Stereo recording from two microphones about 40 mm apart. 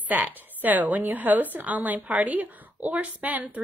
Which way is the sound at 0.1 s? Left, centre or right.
Right.